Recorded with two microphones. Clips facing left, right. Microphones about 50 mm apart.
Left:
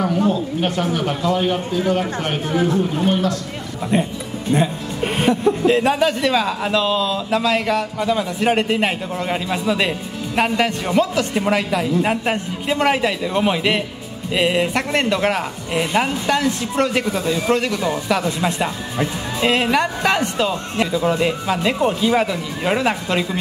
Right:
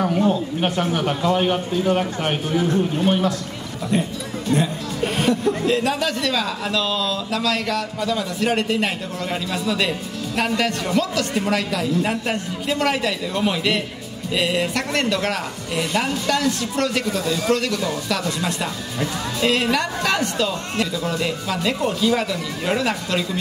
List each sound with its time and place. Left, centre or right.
0.3 s speech: centre
2.5 s a man's voice: left
3.1 s speech: centre
3.9 s speech: left